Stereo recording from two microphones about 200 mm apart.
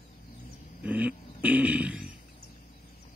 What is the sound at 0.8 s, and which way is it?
Speech, 5° right (ahead or behind).